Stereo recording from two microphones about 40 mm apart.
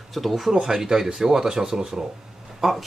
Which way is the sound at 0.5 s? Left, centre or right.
Centre.